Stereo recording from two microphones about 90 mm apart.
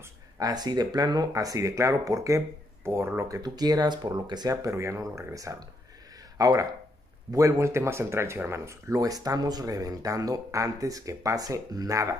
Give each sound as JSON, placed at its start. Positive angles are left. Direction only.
{"t": 0.4, "sound": "speech", "side_deg": -45}
{"t": 3.3, "sound": "speech", "side_deg": -45}